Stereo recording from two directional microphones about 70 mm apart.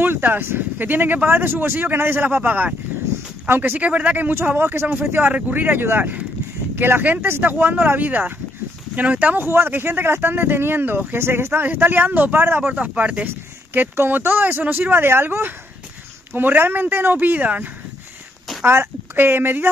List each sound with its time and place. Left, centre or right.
0.0 s speech: right
4.6 s speech: right
9.5 s speech: right
13.7 s speech: right